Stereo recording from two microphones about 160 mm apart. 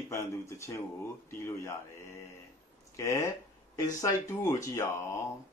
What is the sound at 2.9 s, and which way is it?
Speech, 15° left (ahead or behind).